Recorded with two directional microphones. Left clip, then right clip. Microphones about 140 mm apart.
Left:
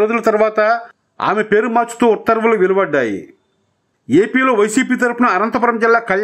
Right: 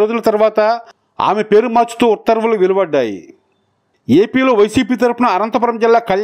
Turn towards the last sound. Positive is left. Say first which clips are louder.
# right 1 dB
turn(degrees=-30)  # may be behind; listen again after turning